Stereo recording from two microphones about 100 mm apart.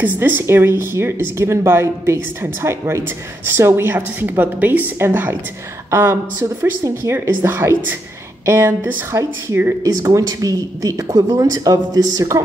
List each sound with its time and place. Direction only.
0.0 s speech: 20° right (ahead or behind)
9.8 s speech: 40° right (ahead or behind)